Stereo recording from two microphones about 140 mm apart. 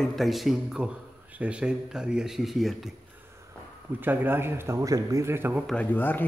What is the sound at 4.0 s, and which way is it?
A man's voice, 15° right (ahead or behind).